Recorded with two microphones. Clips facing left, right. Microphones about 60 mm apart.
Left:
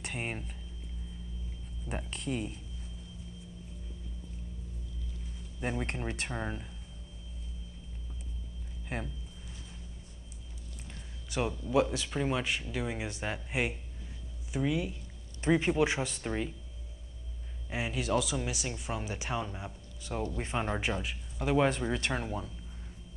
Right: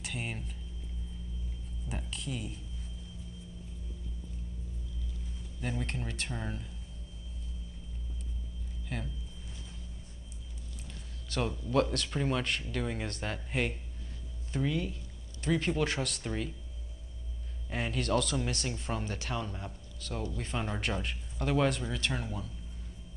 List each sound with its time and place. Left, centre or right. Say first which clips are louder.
0.3 s speech: left 2 dB; left
1.9 s speech: left 3 dB; left
2.3 s speech: left 5 dB; left
5.6 s speech: left 2 dB; left
8.8 s a sound: left 2 dB; left
11.2 s speech: left 1 dB; centre
17.6 s speech: even; centre; by 20.8 s left
20.8 s speech: left 1 dB; centre
21.8 s speech: left 3 dB; left